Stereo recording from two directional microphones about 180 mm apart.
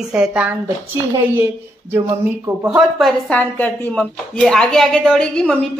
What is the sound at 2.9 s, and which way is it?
Speech, centre (ahead or behind).